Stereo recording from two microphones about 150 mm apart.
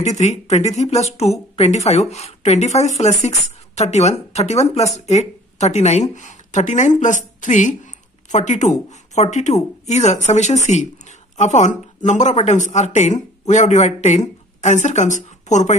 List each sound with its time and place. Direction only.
0.0 s speech: 50° left (ahead or behind)